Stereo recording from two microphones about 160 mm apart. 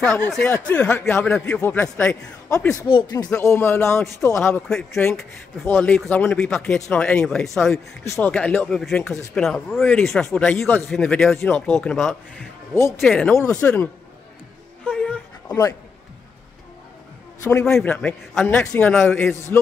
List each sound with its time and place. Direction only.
0.0 s speech: 5° left (ahead or behind)
8.0 s speech: 15° left (ahead or behind)
14.9 s a sound: 5° left (ahead or behind)
17.4 s a man's voice: 15° left (ahead or behind)
17.6 s speech: 5° left (ahead or behind)